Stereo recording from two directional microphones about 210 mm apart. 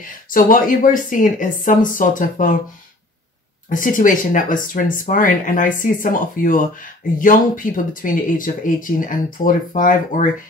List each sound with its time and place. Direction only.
0.3 s speech: 40° left (ahead or behind)
3.6 s speech: 40° left (ahead or behind)